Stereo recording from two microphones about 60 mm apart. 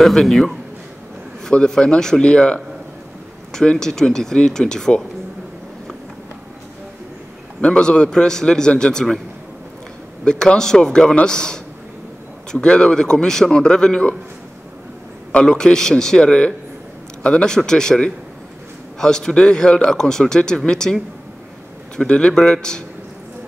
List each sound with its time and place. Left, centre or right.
0.0 s a man's voice: centre
7.6 s speech: centre
10.2 s speech: centre
15.3 s speech: centre